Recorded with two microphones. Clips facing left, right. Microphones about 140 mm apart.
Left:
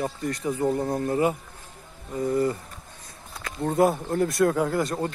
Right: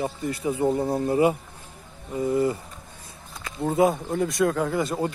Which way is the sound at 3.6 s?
5° right (ahead or behind).